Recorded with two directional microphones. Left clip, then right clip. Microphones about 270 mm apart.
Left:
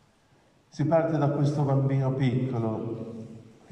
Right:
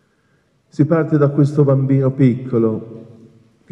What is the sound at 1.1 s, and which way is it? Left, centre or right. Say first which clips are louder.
Speech: right 11 dB; right.